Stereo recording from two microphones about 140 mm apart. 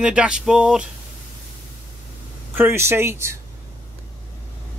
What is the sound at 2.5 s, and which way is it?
Speech, 15° right (ahead or behind).